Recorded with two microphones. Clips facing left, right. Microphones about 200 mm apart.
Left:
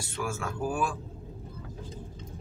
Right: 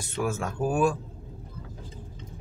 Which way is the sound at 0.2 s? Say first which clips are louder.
Right 4 dB; 40° right (ahead or behind).